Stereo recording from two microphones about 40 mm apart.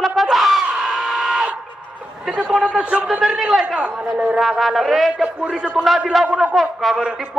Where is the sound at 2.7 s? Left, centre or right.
Right.